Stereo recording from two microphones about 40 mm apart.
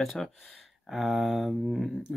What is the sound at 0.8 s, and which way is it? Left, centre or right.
Speech, centre.